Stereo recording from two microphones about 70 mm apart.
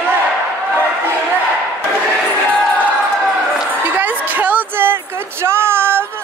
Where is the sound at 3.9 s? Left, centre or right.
Right.